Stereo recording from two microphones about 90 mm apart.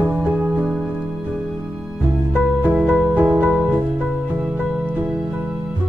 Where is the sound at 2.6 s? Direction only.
20° right (ahead or behind).